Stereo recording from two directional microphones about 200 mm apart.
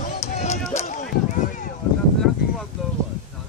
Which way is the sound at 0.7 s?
35° left (ahead or behind).